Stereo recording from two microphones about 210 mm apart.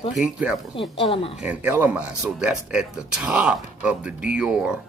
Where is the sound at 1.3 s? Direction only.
5° right (ahead or behind).